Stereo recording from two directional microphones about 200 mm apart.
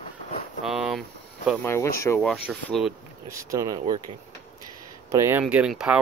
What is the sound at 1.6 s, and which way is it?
Speech, 15° left (ahead or behind).